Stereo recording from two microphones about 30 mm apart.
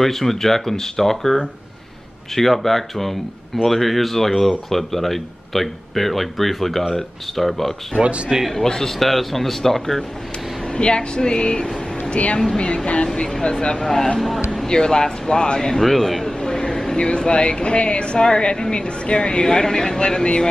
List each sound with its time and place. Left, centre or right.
0.0 s speech: centre
8.0 s a man's voice: right
8.5 s speech: left
9.0 s speech: centre
10.7 s speech: left
13.0 s speech: left
13.8 s speech: centre
15.8 s speech: centre
16.3 s speech: left
19.4 s speech: left